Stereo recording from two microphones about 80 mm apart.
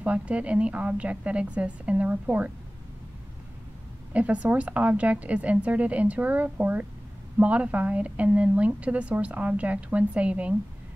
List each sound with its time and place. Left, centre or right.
0.0 s a woman's voice: centre
4.1 s a woman's voice: centre